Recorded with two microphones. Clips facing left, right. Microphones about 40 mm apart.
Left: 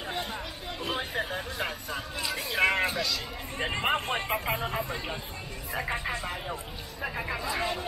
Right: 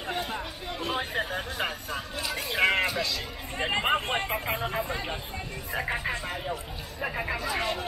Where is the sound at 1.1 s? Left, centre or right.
Centre.